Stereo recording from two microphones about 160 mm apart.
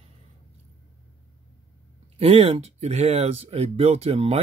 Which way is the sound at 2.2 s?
35° right (ahead or behind).